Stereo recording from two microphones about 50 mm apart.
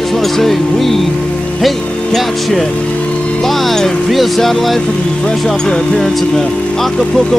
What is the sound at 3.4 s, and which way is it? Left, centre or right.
Music, centre.